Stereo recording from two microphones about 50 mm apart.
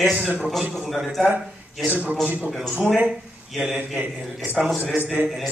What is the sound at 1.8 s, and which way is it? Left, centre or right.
Speech, right.